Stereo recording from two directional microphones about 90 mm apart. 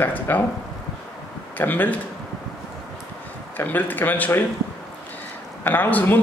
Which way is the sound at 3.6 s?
20° left (ahead or behind).